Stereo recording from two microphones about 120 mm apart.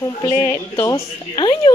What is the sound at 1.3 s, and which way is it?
Speech, 40° left (ahead or behind).